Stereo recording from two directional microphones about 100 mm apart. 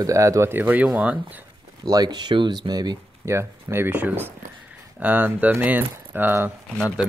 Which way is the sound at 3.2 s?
25° right (ahead or behind).